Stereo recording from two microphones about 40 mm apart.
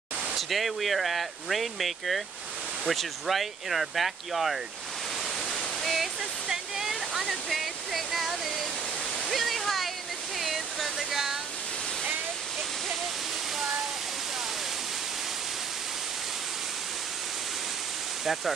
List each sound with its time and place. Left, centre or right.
0.3 s speech: centre
5.8 s waterfall: centre
18.2 s speech: centre